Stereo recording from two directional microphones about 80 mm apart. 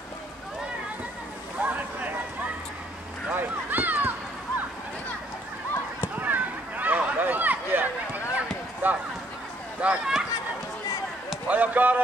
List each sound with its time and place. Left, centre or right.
1.6 s boat: right
3.3 s speech: right
6.1 s a sound: right
8.8 s speech: right
9.8 s speech: centre
11.4 s speech: centre